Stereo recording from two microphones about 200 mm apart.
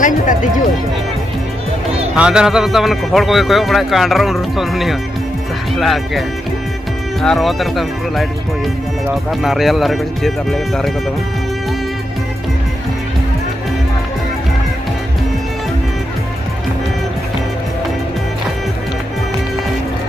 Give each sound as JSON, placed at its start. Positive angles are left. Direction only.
{"t": 0.0, "sound": "speech", "side_deg": 40}
{"t": 2.1, "sound": "speech", "side_deg": -5}
{"t": 9.3, "sound": "speech", "side_deg": 0}